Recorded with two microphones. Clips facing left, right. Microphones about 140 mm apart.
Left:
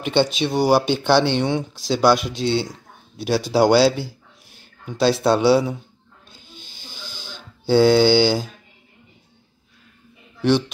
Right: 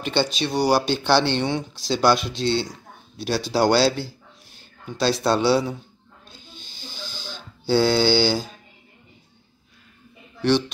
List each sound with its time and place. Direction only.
0.0 s speech: 15° left (ahead or behind)
2.7 s a sound: 15° left (ahead or behind)
3.5 s speech: 10° left (ahead or behind)
6.5 s snake: 10° left (ahead or behind)
7.3 s speech: 15° left (ahead or behind)